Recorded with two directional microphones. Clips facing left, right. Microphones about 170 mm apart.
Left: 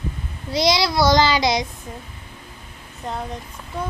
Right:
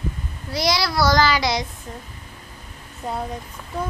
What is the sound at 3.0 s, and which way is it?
Speech, 5° right (ahead or behind).